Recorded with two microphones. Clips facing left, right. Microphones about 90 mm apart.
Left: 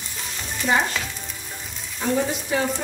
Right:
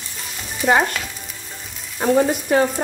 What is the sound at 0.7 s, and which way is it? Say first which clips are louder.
Frying: right 5 dB; 60° right (ahead or behind).